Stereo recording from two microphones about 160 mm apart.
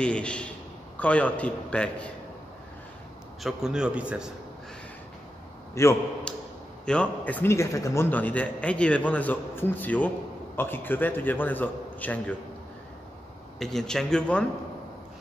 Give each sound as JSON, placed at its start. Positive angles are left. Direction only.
{"t": 0.0, "sound": "a man's voice", "side_deg": 5}
{"t": 3.4, "sound": "a man's voice", "side_deg": -5}
{"t": 5.8, "sound": "a man's voice", "side_deg": 20}
{"t": 13.6, "sound": "a man's voice", "side_deg": 0}